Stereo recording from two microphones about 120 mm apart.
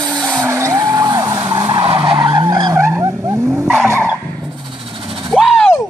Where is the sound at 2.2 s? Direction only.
35° right (ahead or behind).